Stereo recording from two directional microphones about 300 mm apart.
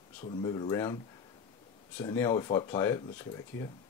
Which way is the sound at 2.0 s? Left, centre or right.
Centre.